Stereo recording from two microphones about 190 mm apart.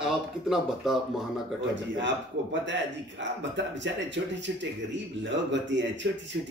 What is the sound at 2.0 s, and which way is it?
Speech, 70° right (ahead or behind).